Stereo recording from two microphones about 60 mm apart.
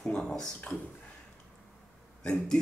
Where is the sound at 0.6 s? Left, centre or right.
Left.